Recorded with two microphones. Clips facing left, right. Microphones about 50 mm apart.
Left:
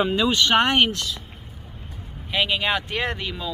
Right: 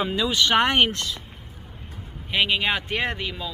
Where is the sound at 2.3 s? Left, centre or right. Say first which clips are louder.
Even; centre.